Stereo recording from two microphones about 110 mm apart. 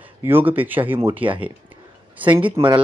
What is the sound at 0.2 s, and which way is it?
A man's voice, 20° right (ahead or behind).